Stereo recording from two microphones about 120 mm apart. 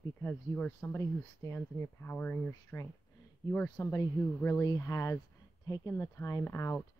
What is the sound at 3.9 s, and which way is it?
Speech, 20° left (ahead or behind).